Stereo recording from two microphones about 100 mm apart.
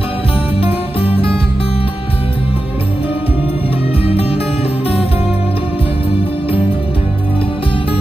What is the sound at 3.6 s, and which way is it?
Music, 70° left (ahead or behind).